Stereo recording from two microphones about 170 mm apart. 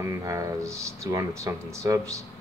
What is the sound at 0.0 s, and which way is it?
Speech, 20° right (ahead or behind).